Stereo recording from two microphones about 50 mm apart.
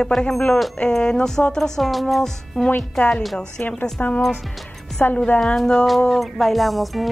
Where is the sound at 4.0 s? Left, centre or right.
Left.